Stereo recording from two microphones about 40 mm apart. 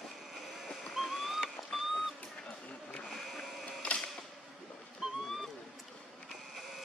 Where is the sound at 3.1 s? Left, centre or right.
Centre.